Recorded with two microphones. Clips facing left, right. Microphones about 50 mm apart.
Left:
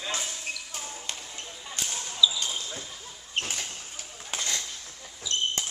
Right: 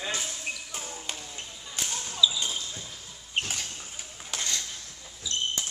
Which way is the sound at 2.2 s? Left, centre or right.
Centre.